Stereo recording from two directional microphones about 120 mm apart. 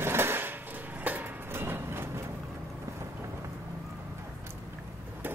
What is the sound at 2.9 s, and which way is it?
Vehicle, 25° right (ahead or behind).